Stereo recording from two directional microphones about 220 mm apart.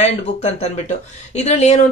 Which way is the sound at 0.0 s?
30° left (ahead or behind).